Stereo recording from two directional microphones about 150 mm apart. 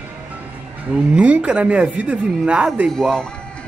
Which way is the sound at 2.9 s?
5° left (ahead or behind).